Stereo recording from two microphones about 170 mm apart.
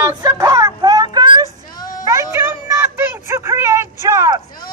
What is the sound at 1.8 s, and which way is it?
Music, 20° left (ahead or behind).